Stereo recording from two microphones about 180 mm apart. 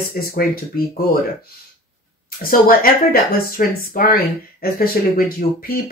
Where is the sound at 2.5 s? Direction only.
55° left (ahead or behind).